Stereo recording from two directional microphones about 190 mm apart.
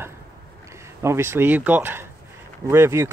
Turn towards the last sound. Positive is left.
turn(degrees=-15)  # may be behind; listen again after turning